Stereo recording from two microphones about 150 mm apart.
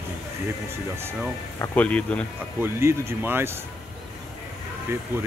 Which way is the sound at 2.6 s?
15° right (ahead or behind).